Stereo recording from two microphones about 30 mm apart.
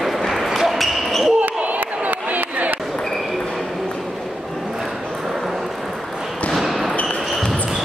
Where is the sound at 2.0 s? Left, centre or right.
Right.